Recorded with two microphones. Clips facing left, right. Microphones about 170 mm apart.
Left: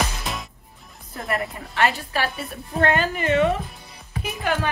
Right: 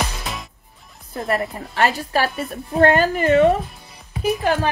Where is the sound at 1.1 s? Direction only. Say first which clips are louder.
Right 4 dB; 30° right (ahead or behind).